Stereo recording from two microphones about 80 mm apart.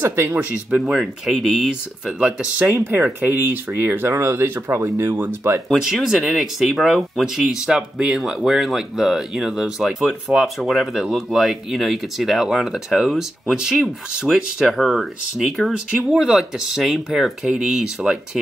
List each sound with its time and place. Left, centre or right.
0.0 s speech: right
0.7 s speech: centre
2.7 s speech: right
5.7 s speech: centre
15.7 s speech: centre